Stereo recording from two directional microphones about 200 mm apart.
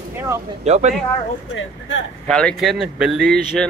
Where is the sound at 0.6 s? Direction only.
35° right (ahead or behind).